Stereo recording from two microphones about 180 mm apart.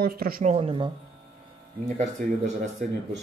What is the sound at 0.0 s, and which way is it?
Speech, 55° right (ahead or behind).